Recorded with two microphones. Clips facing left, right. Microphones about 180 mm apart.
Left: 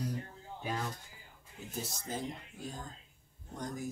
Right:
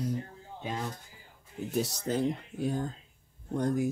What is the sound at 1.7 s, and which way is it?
Speech, 70° right (ahead or behind).